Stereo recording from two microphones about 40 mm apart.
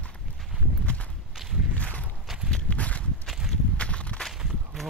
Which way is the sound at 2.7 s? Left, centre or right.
Left.